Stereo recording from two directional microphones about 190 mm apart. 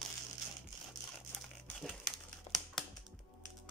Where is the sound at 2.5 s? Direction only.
35° left (ahead or behind).